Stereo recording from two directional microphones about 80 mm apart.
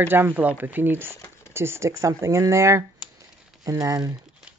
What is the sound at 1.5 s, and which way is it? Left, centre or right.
Speech, right.